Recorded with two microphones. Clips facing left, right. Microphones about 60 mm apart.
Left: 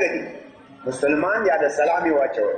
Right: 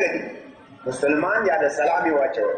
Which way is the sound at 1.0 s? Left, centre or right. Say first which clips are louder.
Even; centre.